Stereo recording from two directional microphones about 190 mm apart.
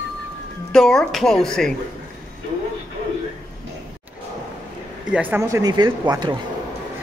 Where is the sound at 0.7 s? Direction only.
5° left (ahead or behind).